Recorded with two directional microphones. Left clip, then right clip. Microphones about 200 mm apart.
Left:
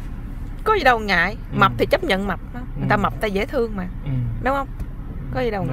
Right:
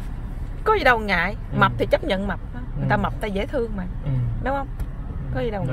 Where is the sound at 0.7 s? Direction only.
15° left (ahead or behind).